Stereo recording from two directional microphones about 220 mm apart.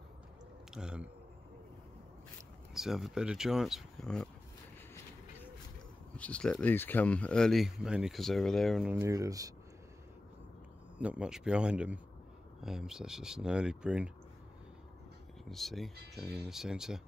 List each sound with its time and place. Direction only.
0.7 s speech: 5° right (ahead or behind)
2.7 s speech: centre (ahead or behind)
6.1 s speech: 5° left (ahead or behind); by 9.5 s 15° right (ahead or behind)
11.0 s speech: 5° right (ahead or behind)
15.4 s speech: centre (ahead or behind)